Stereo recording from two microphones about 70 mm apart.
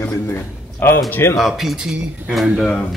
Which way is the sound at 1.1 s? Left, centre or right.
Left.